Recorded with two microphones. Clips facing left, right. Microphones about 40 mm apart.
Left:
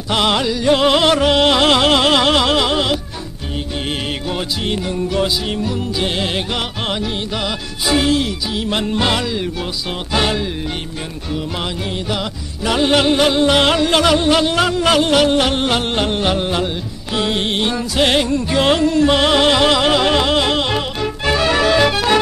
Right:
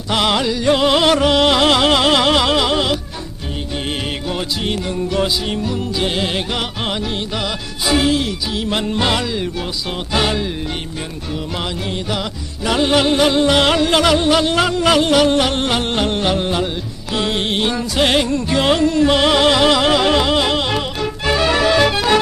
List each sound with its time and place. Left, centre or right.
0.1 s music: centre
4.3 s music: centre
11.9 s music: centre